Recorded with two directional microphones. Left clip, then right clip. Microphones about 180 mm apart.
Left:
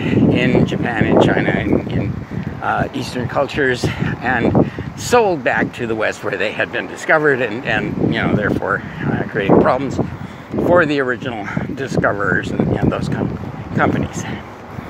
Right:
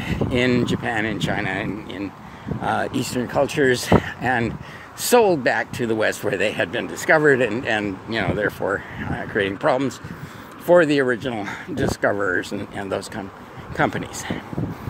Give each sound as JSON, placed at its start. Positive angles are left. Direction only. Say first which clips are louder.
{"t": 0.3, "sound": "speech", "louder": "even", "side_deg": -40}